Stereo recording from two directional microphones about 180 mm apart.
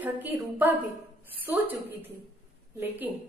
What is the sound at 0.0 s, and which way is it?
Speech, 10° right (ahead or behind).